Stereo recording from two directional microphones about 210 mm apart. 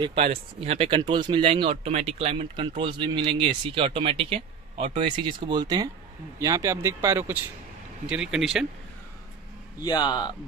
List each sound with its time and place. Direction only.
0.0 s speech: 25° right (ahead or behind); by 8.6 s centre (ahead or behind)
9.8 s a man's voice: 20° left (ahead or behind)